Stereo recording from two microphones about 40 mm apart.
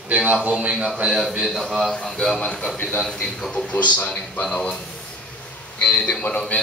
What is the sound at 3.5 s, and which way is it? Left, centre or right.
Speech, left.